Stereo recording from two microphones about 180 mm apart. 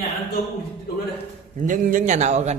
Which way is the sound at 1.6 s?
45° right (ahead or behind).